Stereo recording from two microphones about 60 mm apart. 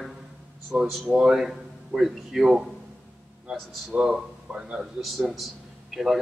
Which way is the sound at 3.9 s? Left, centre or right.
Centre.